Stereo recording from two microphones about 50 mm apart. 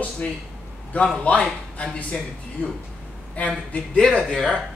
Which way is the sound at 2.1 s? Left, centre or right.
Centre.